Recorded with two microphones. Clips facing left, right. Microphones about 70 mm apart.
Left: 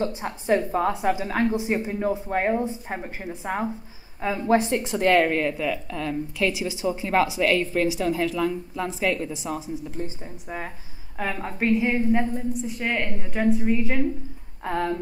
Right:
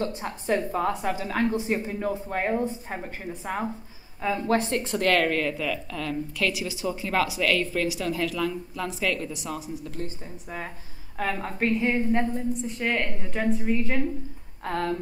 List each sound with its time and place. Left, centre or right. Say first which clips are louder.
0.0 s a woman's voice: left 2 dB; centre